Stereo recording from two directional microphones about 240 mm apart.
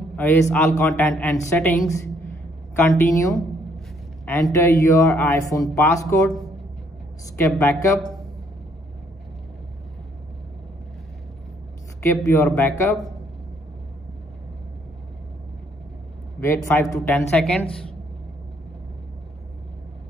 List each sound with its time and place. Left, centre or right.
0.1 s speech: centre
7.3 s speech: centre
12.0 s speech: centre
16.3 s a woman's voice: centre